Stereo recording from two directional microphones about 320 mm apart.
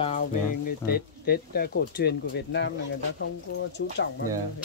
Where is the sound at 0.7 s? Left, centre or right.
Left.